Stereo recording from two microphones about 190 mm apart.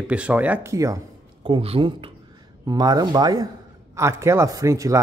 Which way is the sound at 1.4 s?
30° right (ahead or behind).